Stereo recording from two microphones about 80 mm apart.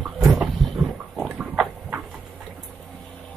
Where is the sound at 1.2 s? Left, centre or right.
Centre.